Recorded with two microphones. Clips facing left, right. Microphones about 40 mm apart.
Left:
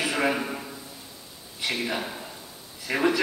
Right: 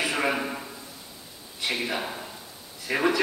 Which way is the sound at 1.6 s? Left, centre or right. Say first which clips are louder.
Even; centre.